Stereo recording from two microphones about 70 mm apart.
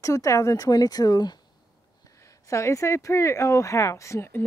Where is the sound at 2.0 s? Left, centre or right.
Left.